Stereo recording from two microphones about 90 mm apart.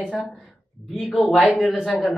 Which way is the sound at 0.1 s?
15° left (ahead or behind).